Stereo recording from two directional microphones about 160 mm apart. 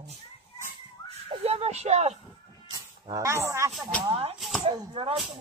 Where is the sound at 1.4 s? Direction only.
40° right (ahead or behind).